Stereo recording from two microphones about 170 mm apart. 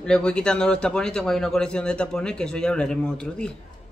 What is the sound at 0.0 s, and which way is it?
A man's voice, 5° left (ahead or behind).